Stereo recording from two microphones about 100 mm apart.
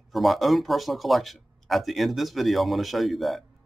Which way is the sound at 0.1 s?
Centre (ahead or behind).